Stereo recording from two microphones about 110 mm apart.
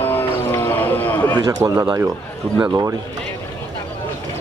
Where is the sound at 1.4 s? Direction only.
30° right (ahead or behind).